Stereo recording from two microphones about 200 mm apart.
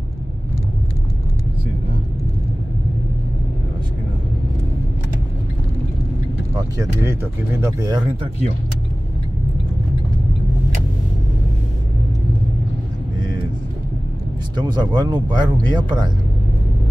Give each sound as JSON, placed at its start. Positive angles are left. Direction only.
{"t": 6.8, "sound": "speech", "side_deg": -15}
{"t": 14.6, "sound": "speech", "side_deg": -20}